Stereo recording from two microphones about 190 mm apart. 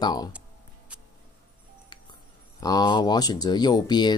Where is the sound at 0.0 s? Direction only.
20° left (ahead or behind).